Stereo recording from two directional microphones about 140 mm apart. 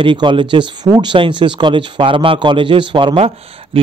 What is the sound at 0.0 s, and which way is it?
Speech, 35° right (ahead or behind).